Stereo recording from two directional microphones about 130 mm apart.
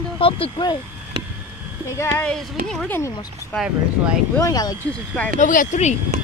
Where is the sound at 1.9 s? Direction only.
20° left (ahead or behind).